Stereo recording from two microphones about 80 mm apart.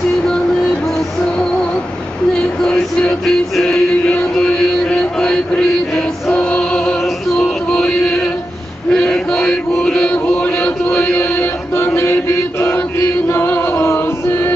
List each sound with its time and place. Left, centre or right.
2.6 s music: centre
8.9 s chant: centre
10.4 s chant: centre
11.1 s mantra: left
13.3 s music: left